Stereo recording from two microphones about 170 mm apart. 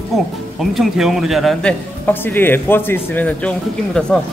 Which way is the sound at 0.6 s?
Centre (ahead or behind).